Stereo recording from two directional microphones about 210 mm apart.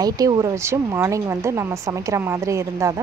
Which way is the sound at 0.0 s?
15° right (ahead or behind).